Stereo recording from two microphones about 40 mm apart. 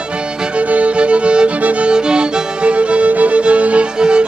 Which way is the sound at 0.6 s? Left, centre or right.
Right.